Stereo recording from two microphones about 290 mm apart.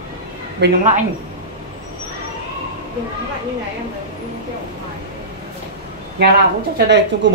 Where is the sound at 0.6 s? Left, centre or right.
Right.